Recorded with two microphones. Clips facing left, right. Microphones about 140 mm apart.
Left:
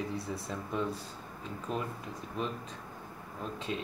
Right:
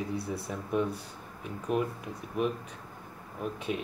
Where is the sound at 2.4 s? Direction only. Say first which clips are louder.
Right 6 dB; 15° right (ahead or behind).